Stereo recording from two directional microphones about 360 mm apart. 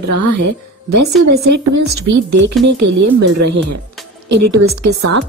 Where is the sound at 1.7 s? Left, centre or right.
Right.